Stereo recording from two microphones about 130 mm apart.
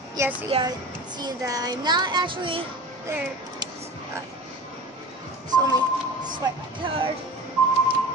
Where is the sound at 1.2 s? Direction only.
30° right (ahead or behind).